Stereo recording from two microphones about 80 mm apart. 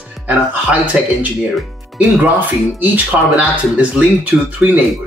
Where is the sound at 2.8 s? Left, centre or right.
Centre.